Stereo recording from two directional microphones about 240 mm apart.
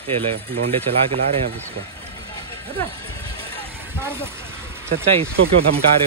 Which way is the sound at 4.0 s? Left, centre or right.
Centre.